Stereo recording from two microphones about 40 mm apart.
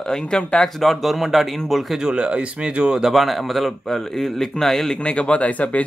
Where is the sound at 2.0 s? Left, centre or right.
Right.